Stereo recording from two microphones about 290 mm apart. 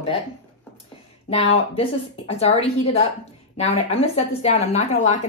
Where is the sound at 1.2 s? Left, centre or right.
Left.